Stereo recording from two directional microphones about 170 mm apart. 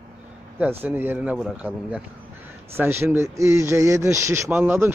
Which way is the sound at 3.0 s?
15° right (ahead or behind).